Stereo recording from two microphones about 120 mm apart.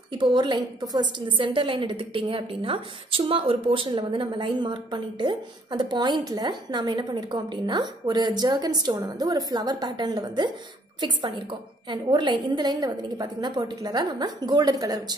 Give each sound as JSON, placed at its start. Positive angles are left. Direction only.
{"t": 0.2, "sound": "a woman's voice", "side_deg": -40}